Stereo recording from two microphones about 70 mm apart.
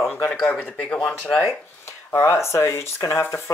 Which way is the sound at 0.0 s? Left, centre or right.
Left.